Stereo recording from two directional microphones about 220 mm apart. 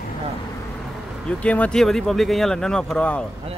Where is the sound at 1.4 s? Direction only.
5° left (ahead or behind).